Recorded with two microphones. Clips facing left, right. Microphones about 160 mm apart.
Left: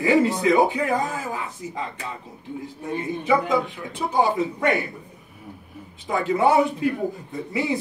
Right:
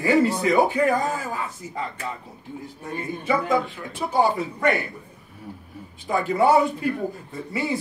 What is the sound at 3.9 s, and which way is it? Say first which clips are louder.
Speech: even; 20° left (ahead or behind).